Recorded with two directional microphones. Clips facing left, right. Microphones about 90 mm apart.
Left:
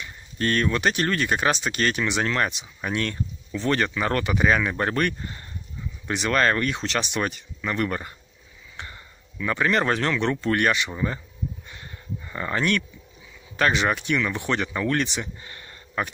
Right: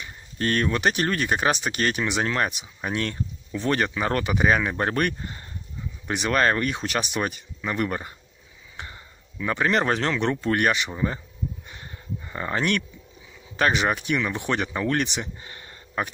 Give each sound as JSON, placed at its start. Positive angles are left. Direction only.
{"t": 0.4, "sound": "speech", "side_deg": -30}
{"t": 11.6, "sound": "a sound", "side_deg": -25}
{"t": 13.6, "sound": "speech", "side_deg": -20}